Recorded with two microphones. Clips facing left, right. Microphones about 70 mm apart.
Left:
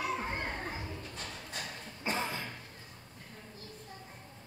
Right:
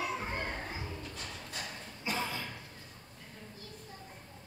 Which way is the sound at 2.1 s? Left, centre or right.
Left.